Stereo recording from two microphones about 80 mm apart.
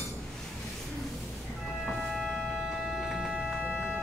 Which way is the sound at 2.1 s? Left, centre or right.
Centre.